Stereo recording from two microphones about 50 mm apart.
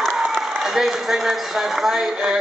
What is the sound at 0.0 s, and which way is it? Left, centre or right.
A man's voice, centre.